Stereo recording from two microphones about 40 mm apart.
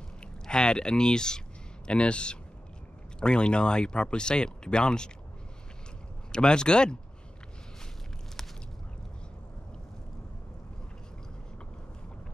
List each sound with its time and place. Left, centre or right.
0.5 s speech: left
6.3 s speech: left